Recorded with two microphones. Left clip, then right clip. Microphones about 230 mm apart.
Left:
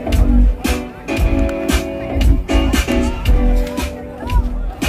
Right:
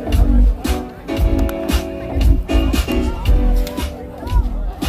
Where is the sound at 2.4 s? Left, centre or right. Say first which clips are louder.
Left 3 dB; left.